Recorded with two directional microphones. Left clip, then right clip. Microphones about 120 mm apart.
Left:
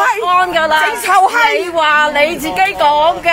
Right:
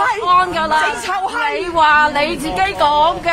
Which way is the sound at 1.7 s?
15° left (ahead or behind).